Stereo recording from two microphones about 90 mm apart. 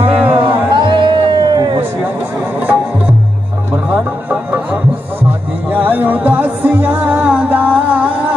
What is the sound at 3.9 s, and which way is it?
Music, 15° right (ahead or behind).